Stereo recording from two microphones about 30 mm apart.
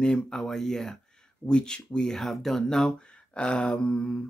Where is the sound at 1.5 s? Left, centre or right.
Left.